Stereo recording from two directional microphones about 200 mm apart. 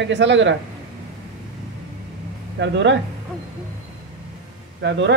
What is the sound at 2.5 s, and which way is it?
Speech, 65° right (ahead or behind).